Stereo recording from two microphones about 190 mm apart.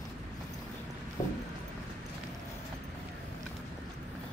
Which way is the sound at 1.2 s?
20° left (ahead or behind).